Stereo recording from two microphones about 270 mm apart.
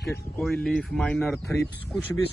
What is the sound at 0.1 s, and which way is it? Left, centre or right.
Speech, centre.